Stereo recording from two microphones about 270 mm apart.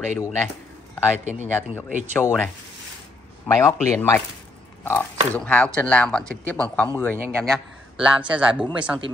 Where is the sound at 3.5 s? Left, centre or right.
Centre.